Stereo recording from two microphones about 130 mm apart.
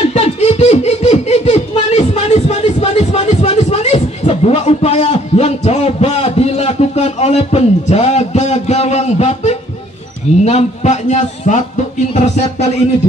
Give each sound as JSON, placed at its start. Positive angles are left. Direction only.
{"t": 0.1, "sound": "snicker", "side_deg": 55}
{"t": 10.4, "sound": "a man's voice", "side_deg": 60}